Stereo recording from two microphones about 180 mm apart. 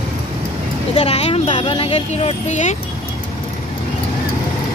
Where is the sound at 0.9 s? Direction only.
35° left (ahead or behind).